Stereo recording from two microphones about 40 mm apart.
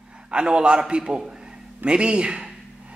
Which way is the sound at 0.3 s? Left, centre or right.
Right.